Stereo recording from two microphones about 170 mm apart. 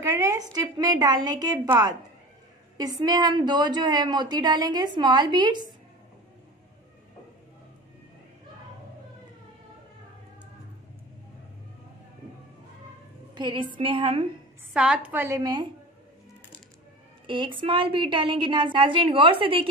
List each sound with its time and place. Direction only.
0.0 s a woman's voice: 15° right (ahead or behind)
13.3 s a woman's voice: 30° right (ahead or behind)
14.7 s a woman's voice: 5° right (ahead or behind); by 15.7 s 25° right (ahead or behind)
17.3 s a woman's voice: 30° right (ahead or behind)